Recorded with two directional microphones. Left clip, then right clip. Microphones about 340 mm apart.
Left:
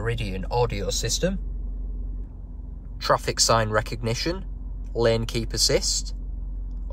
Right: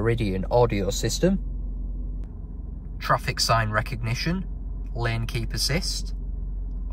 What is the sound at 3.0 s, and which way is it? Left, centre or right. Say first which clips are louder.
Speech: left 2 dB; centre.